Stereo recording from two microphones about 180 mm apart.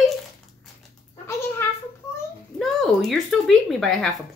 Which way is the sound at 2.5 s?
Centre (ahead or behind).